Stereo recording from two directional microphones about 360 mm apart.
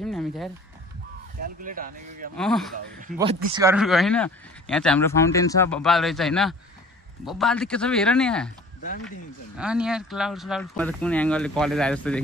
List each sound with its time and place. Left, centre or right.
0.0 s a sound: centre
1.4 s speech: right
2.3 s speech: centre
9.6 s speech: centre